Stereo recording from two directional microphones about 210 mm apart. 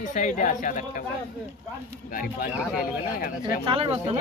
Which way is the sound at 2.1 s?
45° left (ahead or behind).